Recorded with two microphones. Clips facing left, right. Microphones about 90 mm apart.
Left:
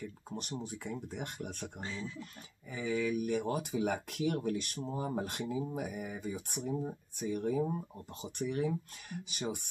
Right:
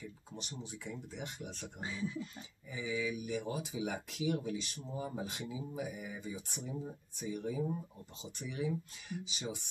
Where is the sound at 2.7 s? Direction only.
55° left (ahead or behind).